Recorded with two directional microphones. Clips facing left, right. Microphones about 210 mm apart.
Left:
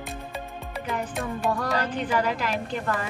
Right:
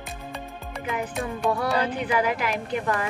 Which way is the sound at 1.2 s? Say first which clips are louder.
Right 2 dB; 10° right (ahead or behind).